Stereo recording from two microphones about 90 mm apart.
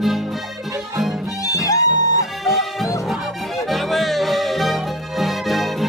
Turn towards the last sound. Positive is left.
turn(degrees=0)  # may be behind; listen again after turning